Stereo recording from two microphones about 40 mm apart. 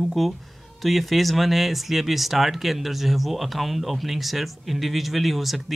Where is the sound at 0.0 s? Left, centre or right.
Centre.